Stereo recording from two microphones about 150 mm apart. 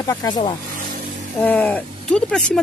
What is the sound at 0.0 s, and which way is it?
Speech, 25° left (ahead or behind).